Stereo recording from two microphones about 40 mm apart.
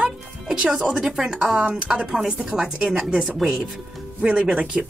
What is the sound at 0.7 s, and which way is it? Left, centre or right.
Speech, centre.